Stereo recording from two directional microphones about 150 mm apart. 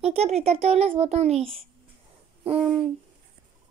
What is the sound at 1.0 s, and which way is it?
Speech, 45° right (ahead or behind).